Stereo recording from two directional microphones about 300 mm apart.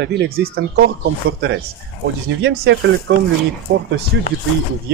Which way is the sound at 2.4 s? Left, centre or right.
Right.